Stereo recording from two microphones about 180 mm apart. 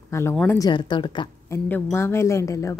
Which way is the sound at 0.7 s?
25° left (ahead or behind).